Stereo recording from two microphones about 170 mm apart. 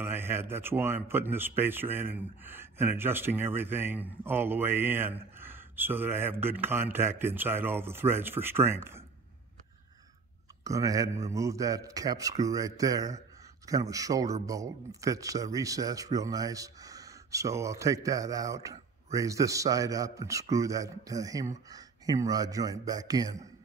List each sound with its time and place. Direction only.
0.0 s speech: 15° right (ahead or behind)
10.6 s speech: 20° right (ahead or behind)